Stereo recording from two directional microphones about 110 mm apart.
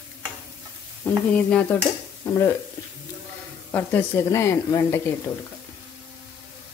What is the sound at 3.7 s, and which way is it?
Speech, 20° left (ahead or behind).